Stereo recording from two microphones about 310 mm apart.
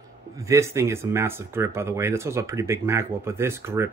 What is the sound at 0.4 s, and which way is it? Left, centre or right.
Speech, centre.